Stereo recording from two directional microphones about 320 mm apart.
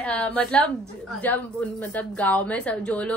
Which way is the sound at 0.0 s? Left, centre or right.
Centre.